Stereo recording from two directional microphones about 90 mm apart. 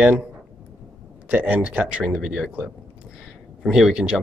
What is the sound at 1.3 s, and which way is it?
A man's voice, 15° right (ahead or behind).